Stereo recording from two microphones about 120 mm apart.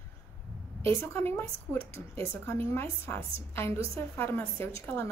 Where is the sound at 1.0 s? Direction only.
20° left (ahead or behind).